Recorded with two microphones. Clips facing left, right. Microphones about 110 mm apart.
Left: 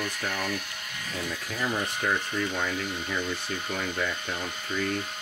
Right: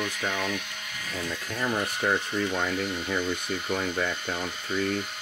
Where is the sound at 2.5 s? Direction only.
Centre (ahead or behind).